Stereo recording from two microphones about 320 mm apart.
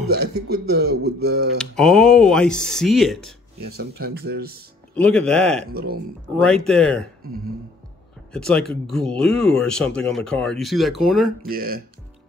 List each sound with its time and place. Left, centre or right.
0.5 s speech: right
0.8 s speech: right
1.6 s speech: centre
3.7 s speech: right
4.9 s speech: centre
5.7 s speech: right
6.3 s speech: centre
8.3 s speech: centre
11.4 s speech: right